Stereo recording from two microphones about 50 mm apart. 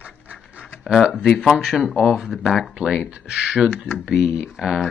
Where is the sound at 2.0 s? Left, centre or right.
Centre.